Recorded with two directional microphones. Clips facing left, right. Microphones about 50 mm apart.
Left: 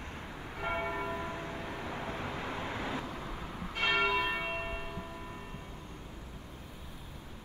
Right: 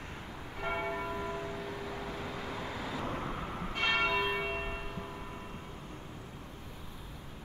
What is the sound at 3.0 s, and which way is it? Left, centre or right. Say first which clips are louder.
Vehicle: right 4 dB; right.